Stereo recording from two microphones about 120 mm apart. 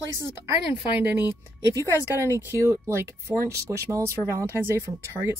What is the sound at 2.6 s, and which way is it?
Speech, 25° right (ahead or behind).